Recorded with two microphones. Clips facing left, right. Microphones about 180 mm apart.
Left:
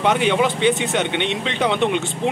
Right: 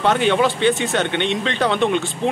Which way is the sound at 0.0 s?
15° left (ahead or behind).